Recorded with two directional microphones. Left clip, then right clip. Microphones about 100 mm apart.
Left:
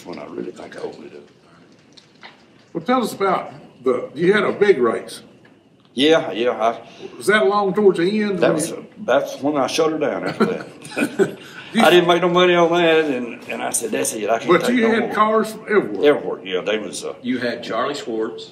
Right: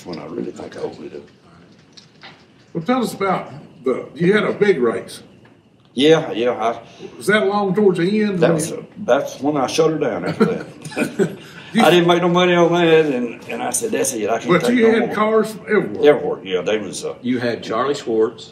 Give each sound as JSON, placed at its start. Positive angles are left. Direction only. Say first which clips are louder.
{"t": 2.8, "sound": "a man's voice", "louder": "left 1 dB", "side_deg": 30}
{"t": 5.9, "sound": "a man's voice", "louder": "right 2 dB", "side_deg": 10}
{"t": 7.2, "sound": "a man's voice", "louder": "left 1 dB", "side_deg": 30}
{"t": 8.4, "sound": "a man's voice", "louder": "right 1 dB", "side_deg": 10}
{"t": 10.8, "sound": "a man's voice", "louder": "left 2 dB", "side_deg": 10}
{"t": 14.5, "sound": "a man's voice", "louder": "right 2 dB", "side_deg": 30}
{"t": 16.0, "sound": "a man's voice", "louder": "right 3 dB", "side_deg": 5}
{"t": 17.2, "sound": "speech", "louder": "right 2 dB", "side_deg": -25}